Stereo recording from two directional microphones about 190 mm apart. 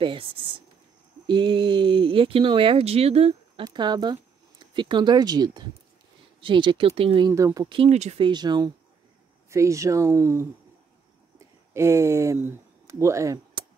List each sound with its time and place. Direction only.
0.0 s speech: 30° right (ahead or behind)
8.3 s speech: 20° right (ahead or behind)
11.3 s a sound: 15° right (ahead or behind)